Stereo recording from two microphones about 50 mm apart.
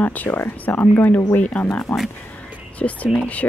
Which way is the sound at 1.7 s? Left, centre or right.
Left.